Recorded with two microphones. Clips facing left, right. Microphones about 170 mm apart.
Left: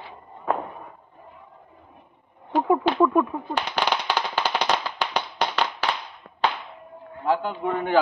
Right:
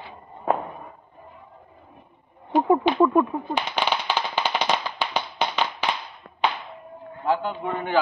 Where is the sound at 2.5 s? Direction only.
20° right (ahead or behind).